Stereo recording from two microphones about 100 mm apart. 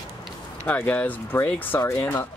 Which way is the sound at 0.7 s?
15° left (ahead or behind).